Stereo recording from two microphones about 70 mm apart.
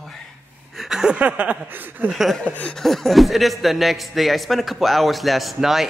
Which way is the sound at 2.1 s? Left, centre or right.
Centre.